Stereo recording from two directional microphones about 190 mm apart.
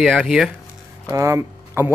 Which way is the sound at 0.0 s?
Centre (ahead or behind).